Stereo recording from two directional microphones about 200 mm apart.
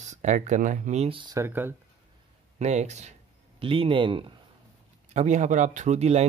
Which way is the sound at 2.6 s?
35° right (ahead or behind).